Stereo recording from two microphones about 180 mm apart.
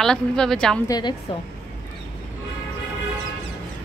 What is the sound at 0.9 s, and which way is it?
Speech, 25° left (ahead or behind).